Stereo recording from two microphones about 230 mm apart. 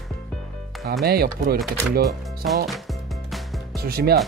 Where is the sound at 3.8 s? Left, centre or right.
Right.